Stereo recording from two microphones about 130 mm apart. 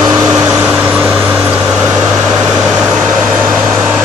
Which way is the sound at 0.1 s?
15° right (ahead or behind).